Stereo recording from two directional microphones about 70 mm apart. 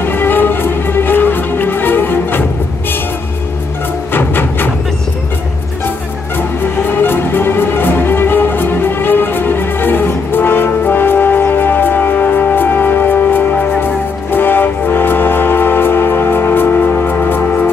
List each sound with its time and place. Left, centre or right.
0.0 s music: left
4.1 s music: left
7.0 s music: left